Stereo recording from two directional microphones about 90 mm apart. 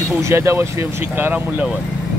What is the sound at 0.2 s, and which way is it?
Speech, 30° right (ahead or behind).